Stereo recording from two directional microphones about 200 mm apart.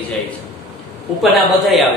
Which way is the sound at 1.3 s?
Centre (ahead or behind).